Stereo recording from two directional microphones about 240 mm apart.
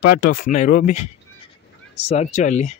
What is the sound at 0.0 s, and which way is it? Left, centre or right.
Speech, left.